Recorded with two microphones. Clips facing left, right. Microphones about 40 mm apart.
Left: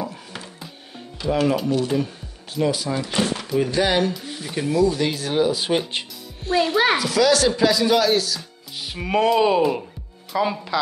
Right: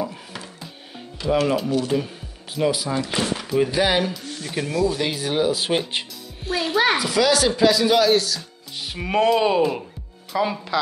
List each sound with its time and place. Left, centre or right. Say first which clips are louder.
0.0 s music: right 2 dB; centre
1.4 s speech: left 1 dB; centre
4.1 s speech: left 1 dB; centre